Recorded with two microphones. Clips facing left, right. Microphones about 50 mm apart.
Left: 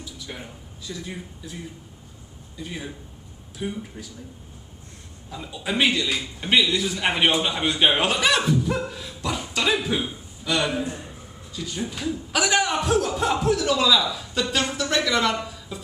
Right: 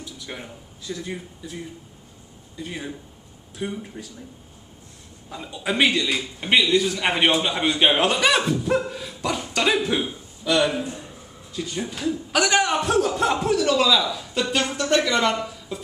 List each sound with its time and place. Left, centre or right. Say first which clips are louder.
0.3 s a man's voice: right 2 dB; centre
5.3 s a man's voice: right 1 dB; centre
6.8 s speech: right 1 dB; centre
9.2 s a sound: right 2 dB; centre
9.7 s a man's voice: right 2 dB; centre
11.5 s speech: right 3 dB; right
11.9 s a man's voice: right 4 dB; centre